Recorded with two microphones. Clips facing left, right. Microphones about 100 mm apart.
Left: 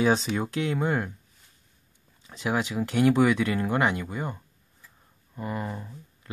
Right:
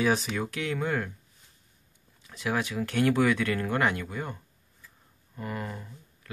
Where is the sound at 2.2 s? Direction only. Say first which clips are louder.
Left 2 dB; 25° left (ahead or behind).